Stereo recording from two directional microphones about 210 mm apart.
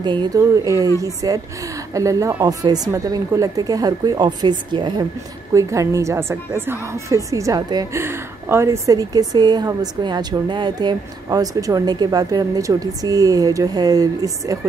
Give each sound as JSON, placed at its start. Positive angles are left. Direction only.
{"t": 0.0, "sound": "a woman's voice", "side_deg": -20}